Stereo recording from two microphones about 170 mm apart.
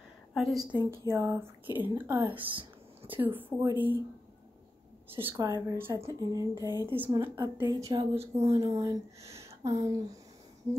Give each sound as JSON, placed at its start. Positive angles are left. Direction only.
{"t": 0.3, "sound": "a woman's voice", "side_deg": 0}
{"t": 0.8, "sound": "a woman's voice", "side_deg": -15}
{"t": 5.1, "sound": "a woman's voice", "side_deg": -15}
{"t": 6.6, "sound": "speech", "side_deg": 20}
{"t": 7.1, "sound": "a woman's voice", "side_deg": -20}
{"t": 8.4, "sound": "speech", "side_deg": -15}